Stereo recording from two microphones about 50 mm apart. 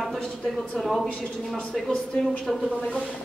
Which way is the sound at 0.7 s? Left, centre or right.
Centre.